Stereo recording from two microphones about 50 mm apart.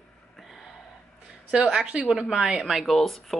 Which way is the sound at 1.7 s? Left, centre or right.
Centre.